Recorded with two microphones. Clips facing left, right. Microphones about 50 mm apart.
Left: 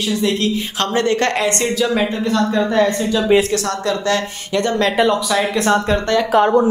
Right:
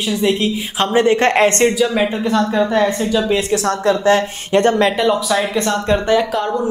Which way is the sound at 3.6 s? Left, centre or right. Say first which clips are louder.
Right 5 dB; right.